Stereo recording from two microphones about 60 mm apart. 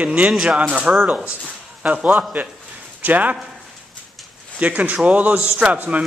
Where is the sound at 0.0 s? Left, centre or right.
Right.